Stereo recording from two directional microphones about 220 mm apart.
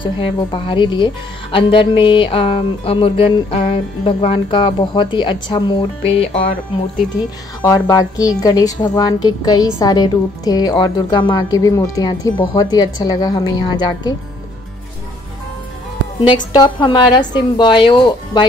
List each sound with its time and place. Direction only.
0.0 s speech: 20° left (ahead or behind)
7.6 s a woman's voice: 15° left (ahead or behind)
16.3 s speech: 20° left (ahead or behind)